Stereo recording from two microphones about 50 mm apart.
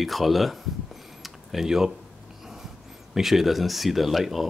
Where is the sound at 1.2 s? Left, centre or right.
Centre.